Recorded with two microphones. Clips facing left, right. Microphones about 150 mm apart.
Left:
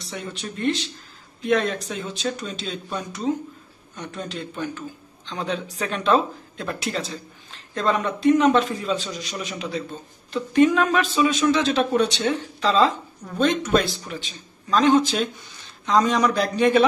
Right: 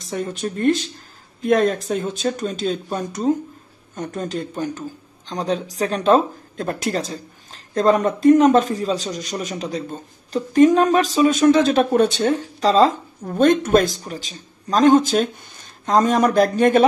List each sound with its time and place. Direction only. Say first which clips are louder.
0.0 s speech: right 8 dB; 45° right (ahead or behind)